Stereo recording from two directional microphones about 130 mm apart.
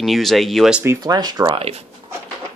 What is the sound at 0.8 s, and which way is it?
Speech, 30° right (ahead or behind).